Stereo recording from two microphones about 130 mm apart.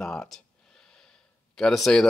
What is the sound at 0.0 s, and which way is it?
Gasp, 5° left (ahead or behind).